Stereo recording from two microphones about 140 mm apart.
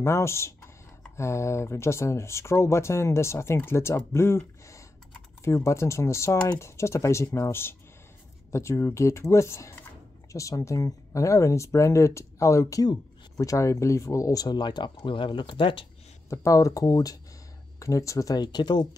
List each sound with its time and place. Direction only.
0.0 s speech: 20° left (ahead or behind); by 15.9 s 40° left (ahead or behind)
16.3 s speech: 20° left (ahead or behind)